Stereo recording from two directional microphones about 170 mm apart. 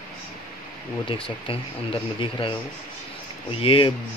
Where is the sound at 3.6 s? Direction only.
30° left (ahead or behind).